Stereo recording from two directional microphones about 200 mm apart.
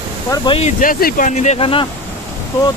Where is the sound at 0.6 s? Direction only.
40° left (ahead or behind).